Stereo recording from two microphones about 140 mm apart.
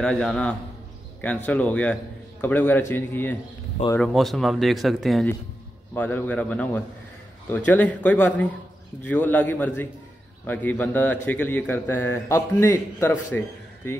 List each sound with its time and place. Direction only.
0.0 s a man's voice: 5° left (ahead or behind)
4.0 s speech: centre (ahead or behind)
5.9 s a man's voice: 10° left (ahead or behind)